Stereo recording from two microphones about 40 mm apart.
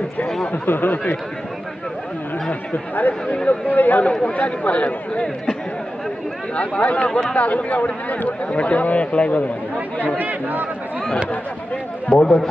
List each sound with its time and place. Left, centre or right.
0.7 s speech: left
2.7 s speech: left
6.5 s speech: left
7.1 s speech: centre
7.3 s speech: left
8.3 s speech: left
10.1 s speech: right
12.1 s speech: centre